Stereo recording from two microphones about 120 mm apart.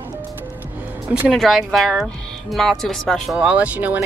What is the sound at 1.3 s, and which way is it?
Speech, centre (ahead or behind).